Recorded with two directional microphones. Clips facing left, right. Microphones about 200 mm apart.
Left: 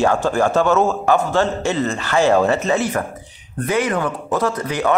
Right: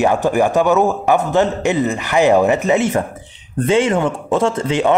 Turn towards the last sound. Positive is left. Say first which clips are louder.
# right 4 dB
turn(degrees=-25)  # may be behind; listen again after turning